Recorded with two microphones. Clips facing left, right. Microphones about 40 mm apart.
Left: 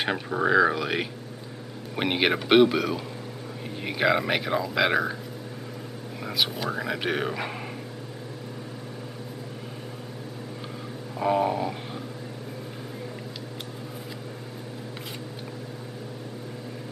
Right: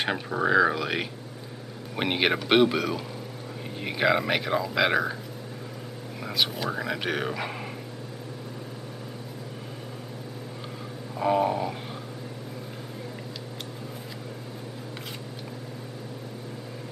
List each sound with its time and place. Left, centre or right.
0.5 s speech: centre
6.2 s speech: centre
11.1 s a sound: centre